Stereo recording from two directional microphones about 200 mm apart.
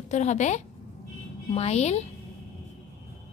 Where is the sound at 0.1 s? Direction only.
35° left (ahead or behind).